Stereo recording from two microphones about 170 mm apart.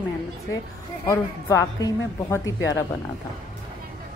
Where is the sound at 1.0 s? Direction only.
20° left (ahead or behind).